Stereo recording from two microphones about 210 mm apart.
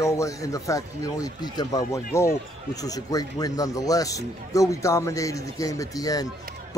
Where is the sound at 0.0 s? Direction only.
15° left (ahead or behind).